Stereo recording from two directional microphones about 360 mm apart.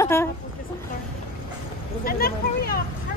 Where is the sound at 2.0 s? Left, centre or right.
Left.